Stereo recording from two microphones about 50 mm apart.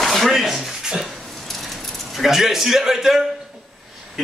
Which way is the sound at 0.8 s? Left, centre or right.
Centre.